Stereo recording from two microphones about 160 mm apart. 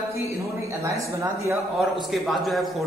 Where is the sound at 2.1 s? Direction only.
Centre (ahead or behind).